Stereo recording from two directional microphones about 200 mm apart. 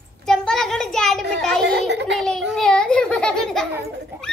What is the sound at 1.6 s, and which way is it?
Speech, 60° right (ahead or behind).